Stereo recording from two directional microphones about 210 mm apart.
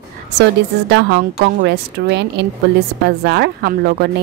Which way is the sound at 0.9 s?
50° right (ahead or behind).